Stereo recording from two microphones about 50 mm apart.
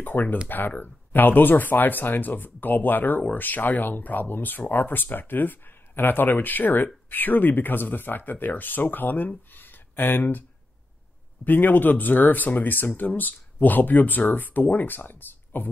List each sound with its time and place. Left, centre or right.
0.0 s speech: left
9.5 s a sound: left
11.4 s speech: left